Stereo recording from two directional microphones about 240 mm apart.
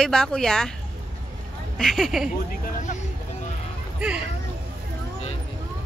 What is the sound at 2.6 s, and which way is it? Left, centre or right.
Vehicle, left.